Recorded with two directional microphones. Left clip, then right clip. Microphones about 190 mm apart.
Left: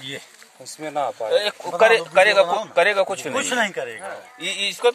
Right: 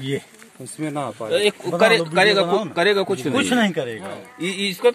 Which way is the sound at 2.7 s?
40° left (ahead or behind).